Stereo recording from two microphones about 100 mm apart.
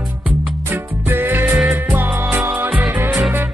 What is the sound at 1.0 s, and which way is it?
Music, 20° right (ahead or behind).